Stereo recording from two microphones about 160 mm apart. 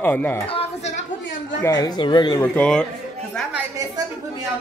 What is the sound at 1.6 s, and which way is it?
Speech, 25° left (ahead or behind).